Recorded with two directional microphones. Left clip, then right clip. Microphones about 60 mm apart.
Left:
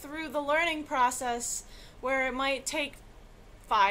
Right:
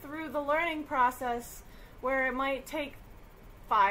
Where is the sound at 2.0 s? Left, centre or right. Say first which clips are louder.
Left 1 dB; left.